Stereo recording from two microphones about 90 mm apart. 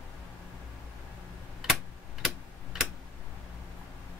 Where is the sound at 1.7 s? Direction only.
Centre (ahead or behind).